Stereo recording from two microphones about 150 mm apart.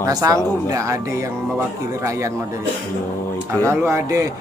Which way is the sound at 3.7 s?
20° right (ahead or behind).